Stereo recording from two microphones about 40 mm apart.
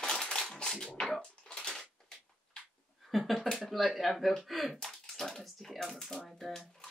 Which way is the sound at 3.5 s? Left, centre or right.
Centre.